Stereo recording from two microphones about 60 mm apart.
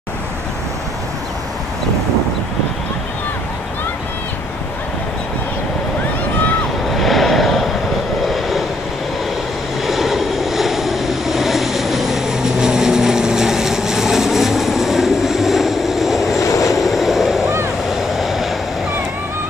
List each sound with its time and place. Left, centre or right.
6.9 s vehicle: centre
9.8 s vehicle: centre
16.3 s vehicle: left
16.7 s vehicle: centre